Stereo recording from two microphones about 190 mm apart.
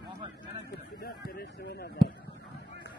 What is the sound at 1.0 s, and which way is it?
Speech, 55° left (ahead or behind).